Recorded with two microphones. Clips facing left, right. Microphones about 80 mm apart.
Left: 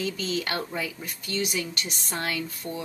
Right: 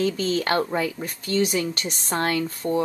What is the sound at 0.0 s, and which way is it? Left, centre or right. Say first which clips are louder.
Speech: right 6 dB; right.